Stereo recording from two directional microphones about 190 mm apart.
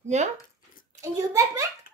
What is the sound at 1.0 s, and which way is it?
Speech, 15° right (ahead or behind).